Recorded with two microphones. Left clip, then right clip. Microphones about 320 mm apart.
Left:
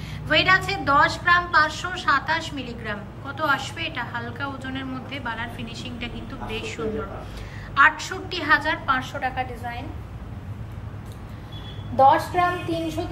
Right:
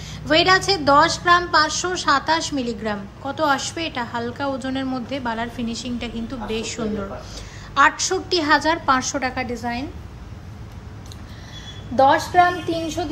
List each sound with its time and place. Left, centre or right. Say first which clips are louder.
0.0 s a woman's voice: right 3 dB; centre
12.0 s a woman's voice: right 2 dB; right